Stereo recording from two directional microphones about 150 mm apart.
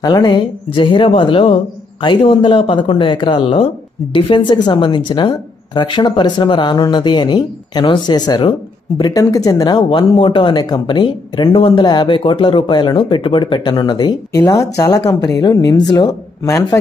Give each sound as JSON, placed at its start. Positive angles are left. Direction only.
{"t": 0.0, "sound": "speech", "side_deg": 30}
{"t": 14.3, "sound": "speech", "side_deg": 20}